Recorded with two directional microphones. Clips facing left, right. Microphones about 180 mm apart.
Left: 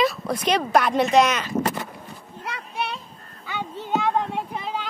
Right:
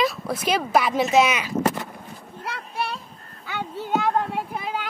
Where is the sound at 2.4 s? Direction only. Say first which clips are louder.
Right 1 dB; centre (ahead or behind).